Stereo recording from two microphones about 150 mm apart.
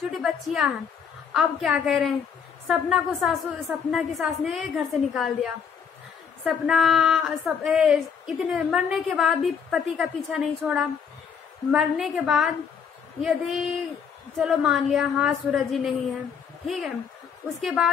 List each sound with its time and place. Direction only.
0.2 s a woman's voice: 5° right (ahead or behind)